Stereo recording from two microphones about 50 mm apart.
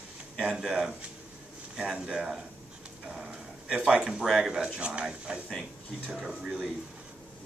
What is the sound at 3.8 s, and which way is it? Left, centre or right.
Speech, centre.